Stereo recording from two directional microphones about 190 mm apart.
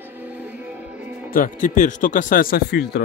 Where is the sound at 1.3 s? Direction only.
45° left (ahead or behind).